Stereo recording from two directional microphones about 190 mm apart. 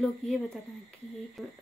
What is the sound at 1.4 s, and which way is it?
Speech, centre (ahead or behind).